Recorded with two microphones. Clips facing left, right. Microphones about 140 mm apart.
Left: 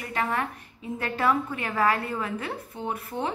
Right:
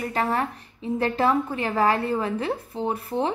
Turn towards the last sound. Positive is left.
turn(degrees=-30)  # may be behind; listen again after turning